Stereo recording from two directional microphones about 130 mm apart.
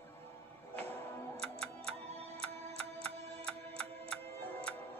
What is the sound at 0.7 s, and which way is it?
Music, 15° left (ahead or behind).